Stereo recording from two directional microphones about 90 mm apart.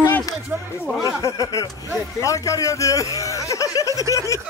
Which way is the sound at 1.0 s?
40° left (ahead or behind).